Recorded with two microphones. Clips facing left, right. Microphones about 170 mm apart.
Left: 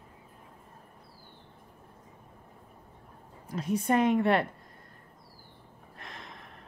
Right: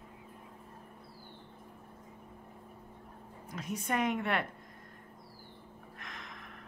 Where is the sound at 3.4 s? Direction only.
30° left (ahead or behind).